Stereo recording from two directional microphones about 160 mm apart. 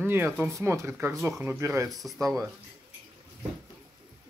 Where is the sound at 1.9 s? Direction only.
Centre (ahead or behind).